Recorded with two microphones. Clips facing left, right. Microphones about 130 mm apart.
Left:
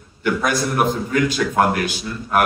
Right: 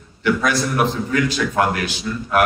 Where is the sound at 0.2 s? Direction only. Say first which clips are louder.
Right 1 dB; 50° left (ahead or behind).